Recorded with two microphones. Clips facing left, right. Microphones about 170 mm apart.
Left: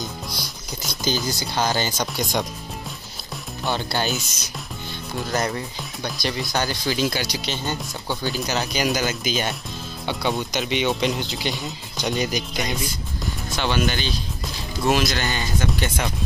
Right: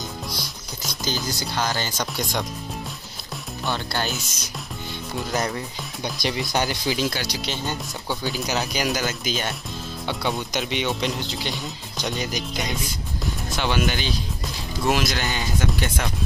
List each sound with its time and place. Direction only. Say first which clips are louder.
0.4 s music: left 1 dB; centre (ahead or behind)
1.5 s speech: left 4 dB; 20° left (ahead or behind)
3.6 s speech: left 2 dB; 15° left (ahead or behind)
5.1 s speech: left 1 dB; centre (ahead or behind)
6.2 s speech: right 1 dB; 15° right (ahead or behind)
7.0 s speech: left 2 dB; 5° left (ahead or behind)
13.2 s music: even; 5° right (ahead or behind)
14.8 s speech: left 2 dB; 5° right (ahead or behind)